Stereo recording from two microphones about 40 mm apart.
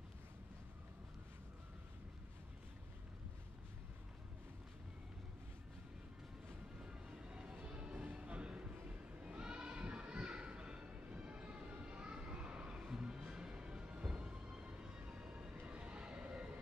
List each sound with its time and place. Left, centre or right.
6.8 s vehicle: right
7.6 s music: right
8.2 s bleat: right
12.8 s music: centre
15.6 s vehicle: right